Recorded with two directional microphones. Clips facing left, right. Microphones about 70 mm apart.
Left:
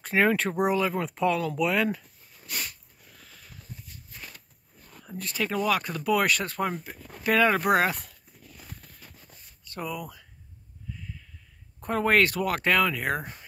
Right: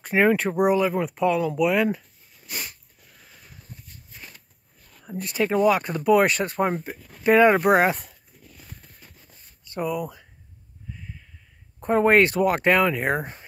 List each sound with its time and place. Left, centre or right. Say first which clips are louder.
0.0 s speech: right 4 dB; centre
1.6 s sniff: right 4 dB; centre
4.1 s a sound: even; centre
5.1 s speech: right 6 dB; right
7.0 s speech: left 3 dB; centre
7.2 s speech: right 6 dB; right
9.7 s speech: right 7 dB; centre
11.8 s speech: right 5 dB; right